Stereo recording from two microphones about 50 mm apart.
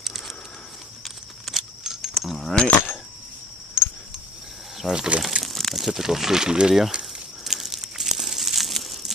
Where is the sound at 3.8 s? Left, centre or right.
Left.